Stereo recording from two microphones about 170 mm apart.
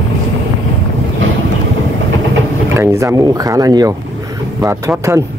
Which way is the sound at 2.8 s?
15° right (ahead or behind).